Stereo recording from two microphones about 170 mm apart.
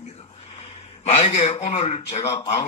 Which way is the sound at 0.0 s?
40° left (ahead or behind).